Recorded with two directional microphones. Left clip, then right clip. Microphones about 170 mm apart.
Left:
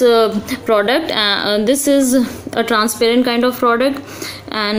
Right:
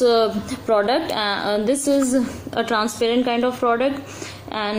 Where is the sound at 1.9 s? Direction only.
10° left (ahead or behind).